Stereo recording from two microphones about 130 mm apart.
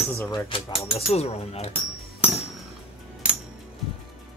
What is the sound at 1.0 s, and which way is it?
Speech, 55° left (ahead or behind).